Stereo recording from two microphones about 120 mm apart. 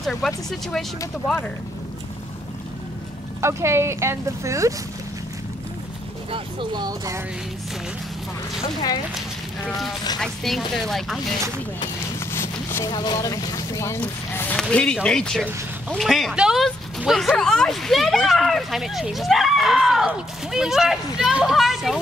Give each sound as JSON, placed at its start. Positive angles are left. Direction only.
{"t": 0.0, "sound": "speech", "side_deg": 5}
{"t": 3.3, "sound": "speech", "side_deg": -20}
{"t": 6.3, "sound": "speech", "side_deg": -35}
{"t": 9.7, "sound": "speech", "side_deg": 0}
{"t": 12.3, "sound": "a sound", "side_deg": 20}
{"t": 12.9, "sound": "speech", "side_deg": 35}